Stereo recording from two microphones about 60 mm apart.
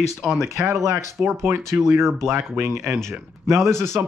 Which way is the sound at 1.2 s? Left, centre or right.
Centre.